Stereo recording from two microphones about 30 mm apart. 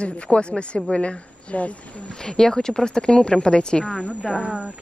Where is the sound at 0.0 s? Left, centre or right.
Left.